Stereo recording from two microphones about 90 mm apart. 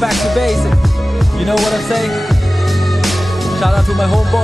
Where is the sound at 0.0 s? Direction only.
Centre (ahead or behind).